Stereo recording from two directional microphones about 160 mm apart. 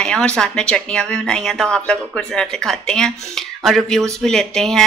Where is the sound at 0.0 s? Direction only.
5° left (ahead or behind).